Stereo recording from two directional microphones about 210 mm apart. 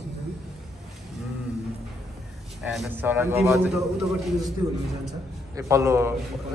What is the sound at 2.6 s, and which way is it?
Speech, 5° right (ahead or behind).